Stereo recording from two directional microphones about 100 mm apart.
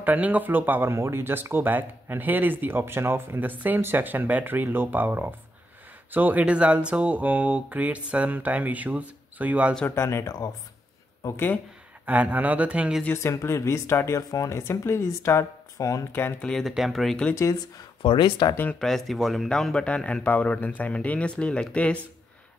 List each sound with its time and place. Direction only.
0.0 s speech: 15° right (ahead or behind)
9.8 s speech: 25° left (ahead or behind)
11.2 s speech: 20° left (ahead or behind)
12.1 s speech: 15° right (ahead or behind)
13.1 s speech: 30° left (ahead or behind)
16.4 s speech: 5° left (ahead or behind)
17.3 s speech: 30° left (ahead or behind)
18.0 s speech: 55° left (ahead or behind)
18.8 s speech: 5° left (ahead or behind)